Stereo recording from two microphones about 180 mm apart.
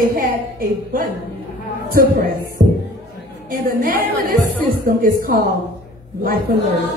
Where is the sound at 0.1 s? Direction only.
55° right (ahead or behind).